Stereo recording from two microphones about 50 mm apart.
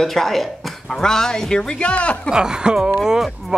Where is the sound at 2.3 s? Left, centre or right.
Centre.